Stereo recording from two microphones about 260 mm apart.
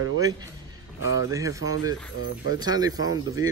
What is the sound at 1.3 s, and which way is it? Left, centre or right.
Speech, centre.